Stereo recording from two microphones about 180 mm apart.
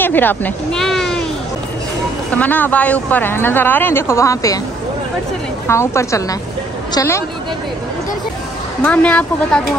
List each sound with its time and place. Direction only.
0.0 s speech: 10° left (ahead or behind)
2.3 s speech: 10° left (ahead or behind)
5.7 s speech: 15° left (ahead or behind)
8.8 s speech: 5° left (ahead or behind)